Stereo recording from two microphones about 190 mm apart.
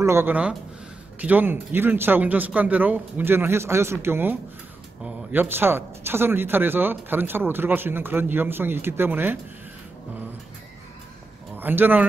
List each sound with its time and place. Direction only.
0.0 s speech: 10° right (ahead or behind)
11.5 s speech: 10° right (ahead or behind)